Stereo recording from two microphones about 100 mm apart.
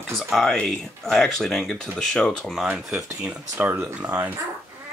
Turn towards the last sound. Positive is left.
turn(degrees=-15)  # may be behind; listen again after turning